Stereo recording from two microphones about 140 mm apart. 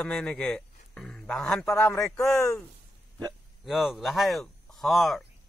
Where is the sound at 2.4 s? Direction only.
20° left (ahead or behind).